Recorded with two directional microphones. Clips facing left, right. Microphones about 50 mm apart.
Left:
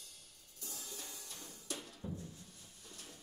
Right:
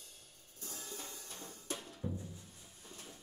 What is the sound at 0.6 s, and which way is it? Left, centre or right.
Drum kit, right.